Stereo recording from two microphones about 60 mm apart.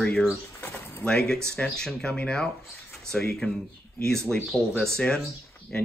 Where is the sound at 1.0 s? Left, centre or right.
Centre.